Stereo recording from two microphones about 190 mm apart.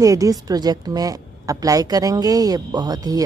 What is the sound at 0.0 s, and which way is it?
A woman's voice, 20° right (ahead or behind).